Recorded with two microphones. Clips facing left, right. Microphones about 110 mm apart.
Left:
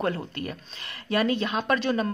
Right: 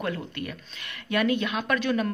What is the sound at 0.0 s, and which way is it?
A woman's voice, 35° left (ahead or behind).